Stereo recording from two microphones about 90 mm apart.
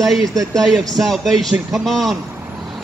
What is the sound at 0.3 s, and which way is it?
Speech, 40° right (ahead or behind).